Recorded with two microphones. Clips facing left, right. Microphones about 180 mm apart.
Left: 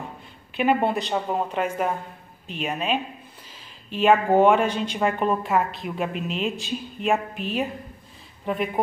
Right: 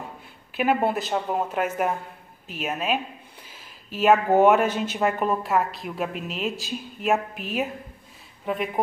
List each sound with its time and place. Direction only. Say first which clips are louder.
0.6 s speech: left 1 dB; 5° right (ahead or behind)